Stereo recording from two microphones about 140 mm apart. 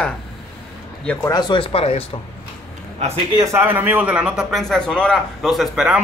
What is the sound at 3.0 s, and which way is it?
Speech, 50° right (ahead or behind).